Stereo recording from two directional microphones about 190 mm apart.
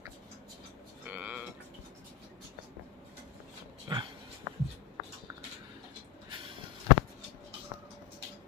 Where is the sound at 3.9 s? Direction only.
20° right (ahead or behind).